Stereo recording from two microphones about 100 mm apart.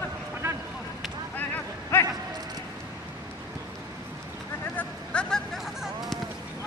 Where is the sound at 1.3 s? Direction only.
20° left (ahead or behind).